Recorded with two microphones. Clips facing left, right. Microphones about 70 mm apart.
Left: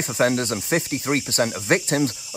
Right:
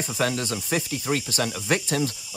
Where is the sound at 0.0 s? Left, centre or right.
Left.